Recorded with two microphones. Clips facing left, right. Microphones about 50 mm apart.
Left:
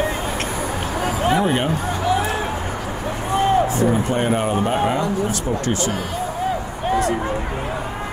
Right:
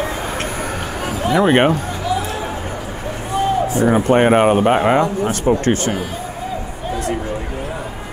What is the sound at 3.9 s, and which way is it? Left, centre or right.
Speech, right.